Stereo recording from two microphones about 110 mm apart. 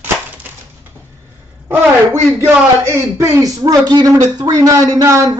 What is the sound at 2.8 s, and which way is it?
A man's voice, 25° right (ahead or behind).